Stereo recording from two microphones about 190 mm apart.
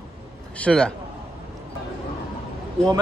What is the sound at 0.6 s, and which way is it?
Speech, 5° left (ahead or behind).